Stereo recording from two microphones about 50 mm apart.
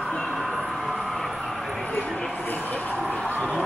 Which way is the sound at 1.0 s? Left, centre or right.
Centre.